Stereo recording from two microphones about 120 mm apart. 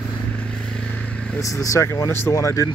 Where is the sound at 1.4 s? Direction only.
25° left (ahead or behind).